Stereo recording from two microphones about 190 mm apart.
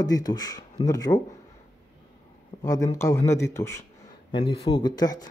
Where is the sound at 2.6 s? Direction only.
20° left (ahead or behind).